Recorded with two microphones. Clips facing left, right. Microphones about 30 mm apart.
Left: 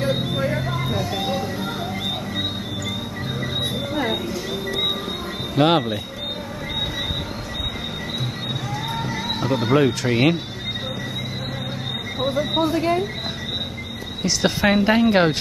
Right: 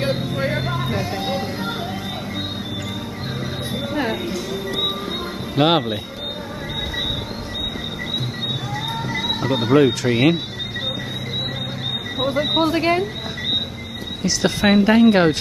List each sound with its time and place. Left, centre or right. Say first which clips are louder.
0.4 s a sound: right 1 dB; right
1.2 s music: even; right
4.1 s train: right 1 dB; centre
5.6 s speech: right 1 dB; centre
9.3 s speech: right 2 dB; centre
12.4 s speech: right 2 dB; right
14.2 s speech: right 1 dB; centre